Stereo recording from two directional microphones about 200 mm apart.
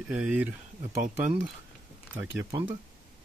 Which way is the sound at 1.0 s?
40° right (ahead or behind).